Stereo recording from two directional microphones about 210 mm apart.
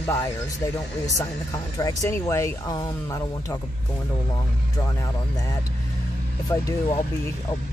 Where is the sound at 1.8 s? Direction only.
15° left (ahead or behind).